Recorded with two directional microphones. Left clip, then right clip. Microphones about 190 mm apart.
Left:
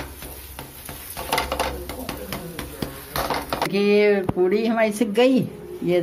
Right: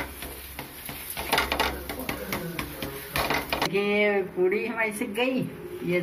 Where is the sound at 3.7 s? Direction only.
70° left (ahead or behind).